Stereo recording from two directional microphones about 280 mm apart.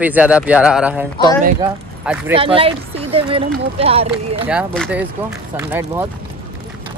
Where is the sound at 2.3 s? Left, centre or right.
Centre.